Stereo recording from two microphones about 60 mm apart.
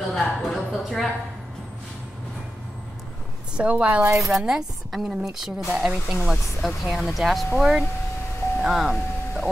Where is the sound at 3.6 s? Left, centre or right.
Right.